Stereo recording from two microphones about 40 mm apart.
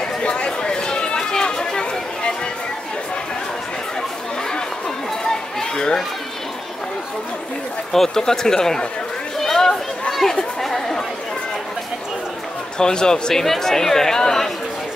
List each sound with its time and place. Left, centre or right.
0.0 s chatter: left
5.2 s chatter: centre
7.9 s speech: centre
9.4 s chatter: centre
12.7 s speech: centre